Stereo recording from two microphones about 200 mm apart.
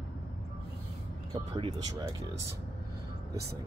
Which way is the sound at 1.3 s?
25° right (ahead or behind).